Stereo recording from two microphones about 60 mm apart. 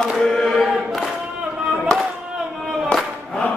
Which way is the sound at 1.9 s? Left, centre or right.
Centre.